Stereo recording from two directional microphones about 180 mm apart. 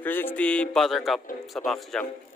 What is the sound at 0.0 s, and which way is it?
A man's voice, 10° left (ahead or behind).